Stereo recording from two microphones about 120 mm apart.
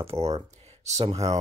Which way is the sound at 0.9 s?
65° right (ahead or behind).